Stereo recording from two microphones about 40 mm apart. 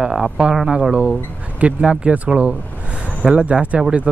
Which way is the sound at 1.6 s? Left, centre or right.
Right.